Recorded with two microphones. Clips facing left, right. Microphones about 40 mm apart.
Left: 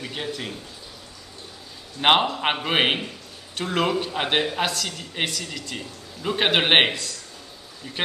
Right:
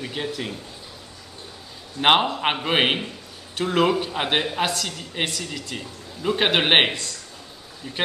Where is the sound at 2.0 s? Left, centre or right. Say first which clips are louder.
Right 1 dB; centre.